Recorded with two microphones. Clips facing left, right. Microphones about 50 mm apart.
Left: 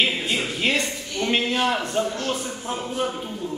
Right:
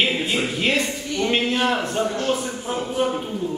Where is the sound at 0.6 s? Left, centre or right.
Centre.